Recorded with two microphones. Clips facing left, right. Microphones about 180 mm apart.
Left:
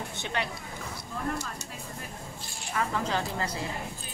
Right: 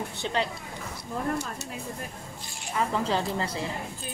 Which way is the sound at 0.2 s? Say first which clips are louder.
Right 5 dB; 30° right (ahead or behind).